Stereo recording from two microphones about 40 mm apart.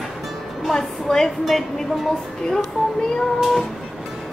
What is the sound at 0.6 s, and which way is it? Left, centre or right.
Music, centre.